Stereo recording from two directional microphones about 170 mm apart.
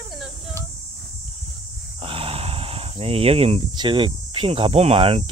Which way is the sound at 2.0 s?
35° right (ahead or behind).